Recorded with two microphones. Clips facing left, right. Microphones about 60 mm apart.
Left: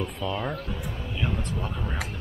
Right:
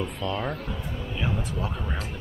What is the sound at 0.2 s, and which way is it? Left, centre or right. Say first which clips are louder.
Speech: even; centre.